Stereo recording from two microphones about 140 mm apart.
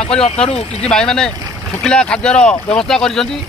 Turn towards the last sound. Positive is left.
turn(degrees=5)  # may be behind; listen again after turning